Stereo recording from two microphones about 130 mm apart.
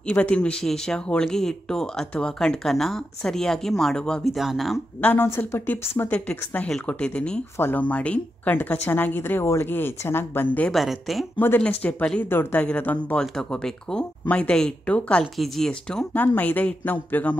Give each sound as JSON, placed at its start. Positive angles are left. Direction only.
{"t": 0.0, "sound": "speech", "side_deg": 10}
{"t": 5.0, "sound": "speech", "side_deg": 15}
{"t": 10.7, "sound": "speech", "side_deg": 0}
{"t": 11.3, "sound": "speech", "side_deg": 15}